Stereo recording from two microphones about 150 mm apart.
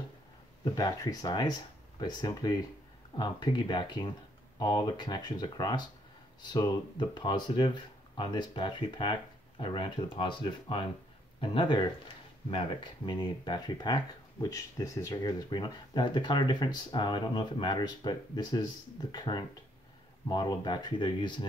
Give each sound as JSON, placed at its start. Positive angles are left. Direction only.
{"t": 0.7, "sound": "speech", "side_deg": 25}